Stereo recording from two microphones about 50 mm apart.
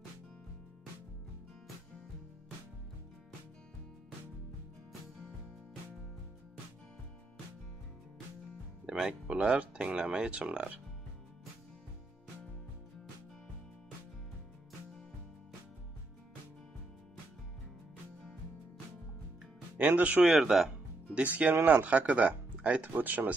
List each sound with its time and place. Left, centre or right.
8.8 s music: centre
9.3 s speech: right
20.0 s speech: right
20.2 s speech: centre
21.1 s speech: right
22.9 s speech: right